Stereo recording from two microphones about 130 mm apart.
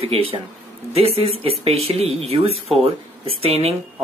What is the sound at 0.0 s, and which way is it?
Speech, 50° right (ahead or behind).